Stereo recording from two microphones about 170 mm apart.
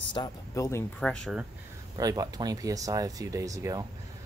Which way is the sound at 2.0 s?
20° right (ahead or behind).